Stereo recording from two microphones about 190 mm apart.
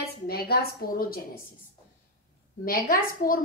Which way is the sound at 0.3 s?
55° left (ahead or behind).